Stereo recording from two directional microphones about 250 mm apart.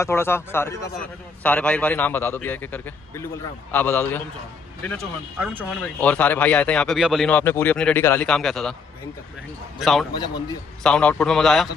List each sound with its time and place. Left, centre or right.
0.0 s a man's voice: centre
4.8 s speech: centre
9.8 s speech: centre
10.1 s a man's voice: centre
10.8 s speech: centre